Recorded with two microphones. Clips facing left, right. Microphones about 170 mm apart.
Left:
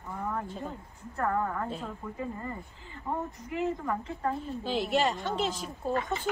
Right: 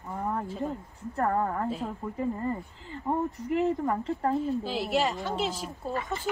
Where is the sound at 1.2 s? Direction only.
40° right (ahead or behind).